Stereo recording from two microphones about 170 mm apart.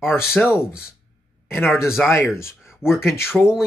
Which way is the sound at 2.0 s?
15° left (ahead or behind).